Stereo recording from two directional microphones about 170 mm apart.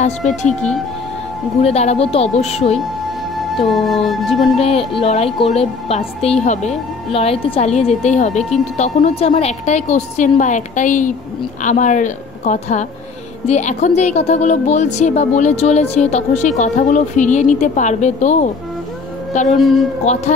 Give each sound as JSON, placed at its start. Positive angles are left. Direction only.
{"t": 0.6, "sound": "speech", "side_deg": 5}
{"t": 1.6, "sound": "a woman's voice", "side_deg": 35}
{"t": 3.3, "sound": "speech", "side_deg": 0}
{"t": 4.6, "sound": "a woman's voice", "side_deg": 35}
{"t": 7.1, "sound": "a woman's voice", "side_deg": 35}
{"t": 19.5, "sound": "speech", "side_deg": 0}
{"t": 20.1, "sound": "speech", "side_deg": 40}